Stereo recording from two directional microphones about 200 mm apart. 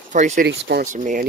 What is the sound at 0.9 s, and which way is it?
Speech, 40° right (ahead or behind).